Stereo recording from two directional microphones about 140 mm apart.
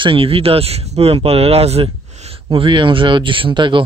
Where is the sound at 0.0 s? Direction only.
40° right (ahead or behind).